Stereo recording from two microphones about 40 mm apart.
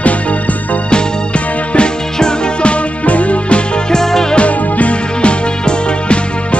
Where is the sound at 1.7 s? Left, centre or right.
Left.